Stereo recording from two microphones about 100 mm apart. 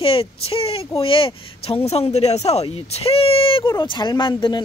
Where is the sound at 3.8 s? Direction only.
45° left (ahead or behind).